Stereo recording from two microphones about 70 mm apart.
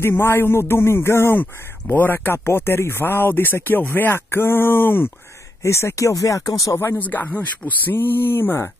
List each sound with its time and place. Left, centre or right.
0.0 s a man's voice: left
7.0 s a man's voice: left